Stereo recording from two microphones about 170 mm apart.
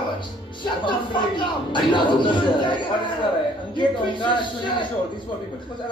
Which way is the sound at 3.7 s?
30° left (ahead or behind).